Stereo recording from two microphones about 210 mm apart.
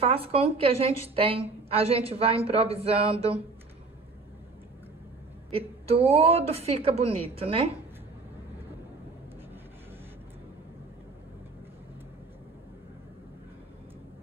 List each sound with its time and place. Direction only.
0.0 s a woman's voice: 25° right (ahead or behind)
5.5 s a woman's voice: 25° right (ahead or behind)